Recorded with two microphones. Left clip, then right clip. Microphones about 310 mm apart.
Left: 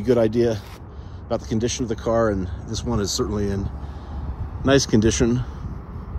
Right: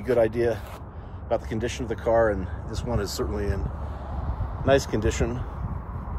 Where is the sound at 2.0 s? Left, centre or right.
Centre.